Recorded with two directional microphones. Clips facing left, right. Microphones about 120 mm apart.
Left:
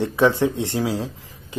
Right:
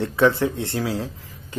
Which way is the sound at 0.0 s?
15° left (ahead or behind).